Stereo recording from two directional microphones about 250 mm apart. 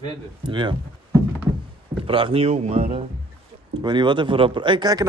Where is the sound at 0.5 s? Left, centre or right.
Centre.